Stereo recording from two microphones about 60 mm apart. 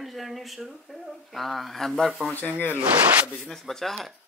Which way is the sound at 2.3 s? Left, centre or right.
Left.